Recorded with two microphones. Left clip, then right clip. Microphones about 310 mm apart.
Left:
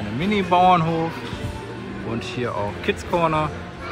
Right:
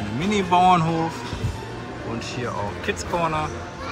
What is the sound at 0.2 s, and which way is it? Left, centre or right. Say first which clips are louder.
Speech: left 1 dB; centre.